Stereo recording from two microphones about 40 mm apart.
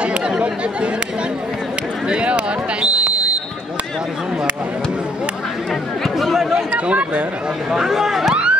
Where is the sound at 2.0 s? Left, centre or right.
Right.